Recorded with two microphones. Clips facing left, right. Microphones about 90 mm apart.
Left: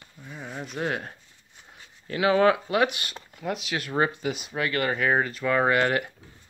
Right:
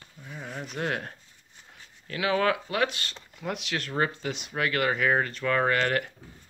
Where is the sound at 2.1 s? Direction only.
25° left (ahead or behind); by 3.9 s 10° left (ahead or behind).